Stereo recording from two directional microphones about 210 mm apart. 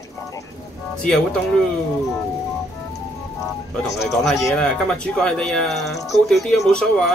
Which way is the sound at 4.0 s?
Centre (ahead or behind).